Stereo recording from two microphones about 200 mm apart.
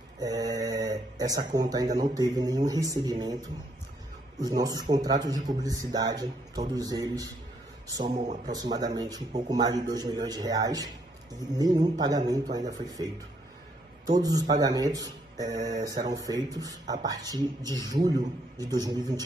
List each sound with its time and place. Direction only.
0.2 s speech: 20° right (ahead or behind)
4.4 s speech: 20° right (ahead or behind)
8.1 s a man's voice: 35° right (ahead or behind)
8.5 s speech: 20° right (ahead or behind)
14.1 s speech: 20° right (ahead or behind)